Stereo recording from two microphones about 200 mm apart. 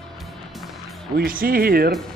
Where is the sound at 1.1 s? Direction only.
45° right (ahead or behind).